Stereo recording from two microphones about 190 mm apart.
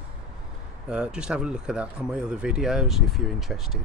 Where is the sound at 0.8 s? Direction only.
5° right (ahead or behind).